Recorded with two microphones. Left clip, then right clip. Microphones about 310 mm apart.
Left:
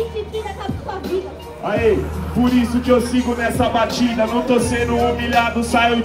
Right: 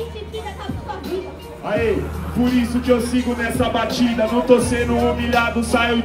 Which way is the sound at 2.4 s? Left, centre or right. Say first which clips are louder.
Left 1 dB; centre.